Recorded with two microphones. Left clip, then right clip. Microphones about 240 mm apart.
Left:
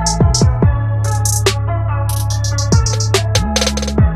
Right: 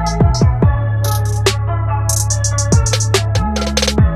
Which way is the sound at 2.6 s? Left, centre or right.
Centre.